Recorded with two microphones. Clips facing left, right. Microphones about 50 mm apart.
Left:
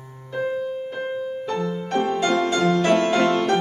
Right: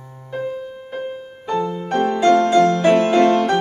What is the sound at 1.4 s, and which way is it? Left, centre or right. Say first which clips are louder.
Music: right 9 dB; centre.